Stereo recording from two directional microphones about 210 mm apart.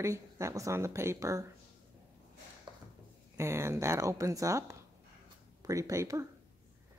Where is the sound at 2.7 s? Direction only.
20° right (ahead or behind).